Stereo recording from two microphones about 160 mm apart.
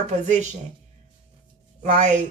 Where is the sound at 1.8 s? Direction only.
50° right (ahead or behind).